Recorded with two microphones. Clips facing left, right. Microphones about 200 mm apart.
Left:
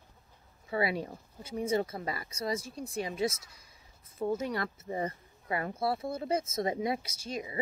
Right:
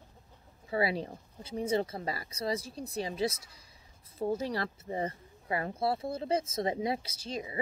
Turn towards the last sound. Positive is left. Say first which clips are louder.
# even
turn(degrees=-30)  # may be behind; listen again after turning